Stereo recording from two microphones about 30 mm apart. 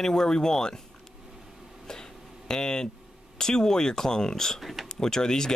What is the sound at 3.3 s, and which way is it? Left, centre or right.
Speech, left.